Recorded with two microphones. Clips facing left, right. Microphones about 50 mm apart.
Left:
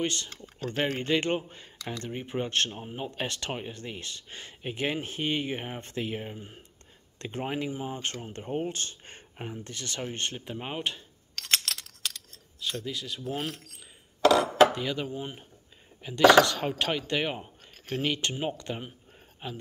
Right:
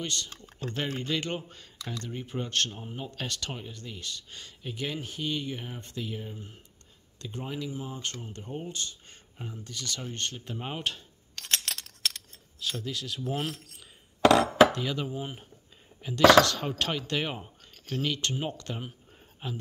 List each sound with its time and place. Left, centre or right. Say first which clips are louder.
0.0 s speech: left 4 dB; left
1.3 s speech: left 5 dB; left
7.2 s speech: left 4 dB; left
10.4 s speech: left 1 dB; centre
12.5 s speech: even; centre
14.7 s dishes: even; centre
15.0 s speech: even; centre
17.8 s speech: left 1 dB; left
18.3 s speech: left 1 dB; centre